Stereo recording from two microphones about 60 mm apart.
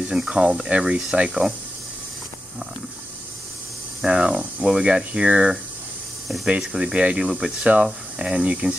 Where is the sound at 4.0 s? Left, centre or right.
Centre.